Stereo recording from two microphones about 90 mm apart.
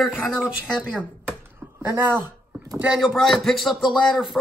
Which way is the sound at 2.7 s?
10° right (ahead or behind).